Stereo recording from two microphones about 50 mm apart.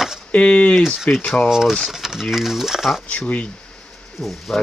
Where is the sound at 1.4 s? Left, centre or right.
Centre.